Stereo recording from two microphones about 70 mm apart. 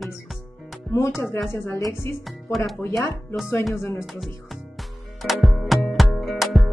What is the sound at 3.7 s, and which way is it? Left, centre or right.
Speech, left.